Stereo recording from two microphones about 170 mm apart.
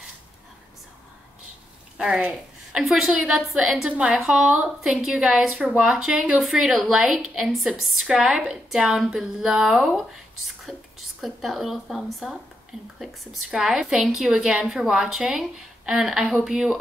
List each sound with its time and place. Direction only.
2.0 s a woman's voice: 5° right (ahead or behind)